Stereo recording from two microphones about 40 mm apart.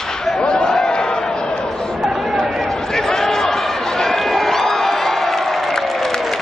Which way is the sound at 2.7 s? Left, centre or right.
Centre.